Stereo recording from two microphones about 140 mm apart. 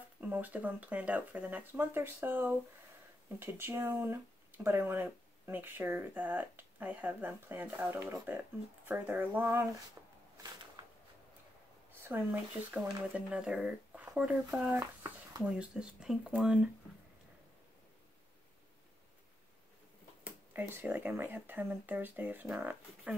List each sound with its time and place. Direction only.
0.2 s speech: 10° right (ahead or behind)
10.0 s shuffling cards: 20° right (ahead or behind)
11.9 s speech: 15° right (ahead or behind)
20.2 s speech: 15° right (ahead or behind)